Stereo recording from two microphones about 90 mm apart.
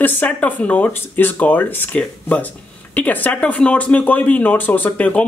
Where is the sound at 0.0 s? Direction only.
20° left (ahead or behind).